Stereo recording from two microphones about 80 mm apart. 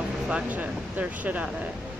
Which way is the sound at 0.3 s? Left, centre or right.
Centre.